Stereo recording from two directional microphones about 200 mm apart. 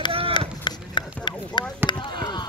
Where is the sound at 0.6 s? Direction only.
20° left (ahead or behind).